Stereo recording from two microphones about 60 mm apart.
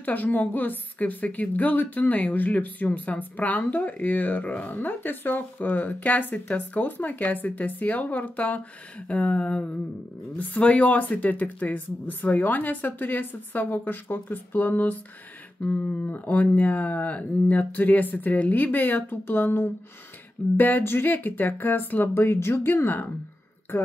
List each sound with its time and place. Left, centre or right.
0.0 s a woman's voice: left